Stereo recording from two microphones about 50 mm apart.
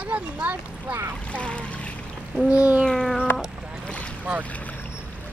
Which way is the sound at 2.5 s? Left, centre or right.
Right.